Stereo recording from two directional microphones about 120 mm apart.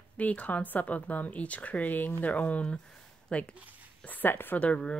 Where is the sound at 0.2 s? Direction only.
10° left (ahead or behind).